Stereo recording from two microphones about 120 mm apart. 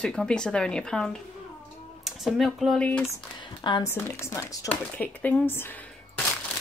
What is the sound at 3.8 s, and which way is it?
Speech, 20° left (ahead or behind).